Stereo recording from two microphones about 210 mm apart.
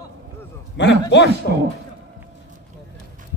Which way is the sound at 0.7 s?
55° left (ahead or behind).